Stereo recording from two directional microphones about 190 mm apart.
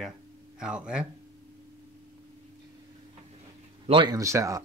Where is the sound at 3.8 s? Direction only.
25° right (ahead or behind).